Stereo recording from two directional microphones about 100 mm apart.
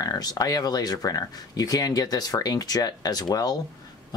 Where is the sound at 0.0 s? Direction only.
40° left (ahead or behind).